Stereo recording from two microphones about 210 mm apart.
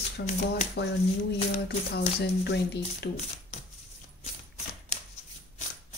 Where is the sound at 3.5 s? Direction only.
30° left (ahead or behind).